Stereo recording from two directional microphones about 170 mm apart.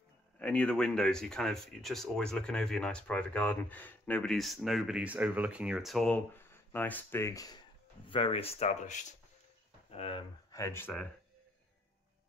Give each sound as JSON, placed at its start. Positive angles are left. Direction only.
{"t": 0.4, "sound": "speech", "side_deg": 10}
{"t": 8.1, "sound": "speech", "side_deg": 35}
{"t": 10.5, "sound": "speech", "side_deg": 15}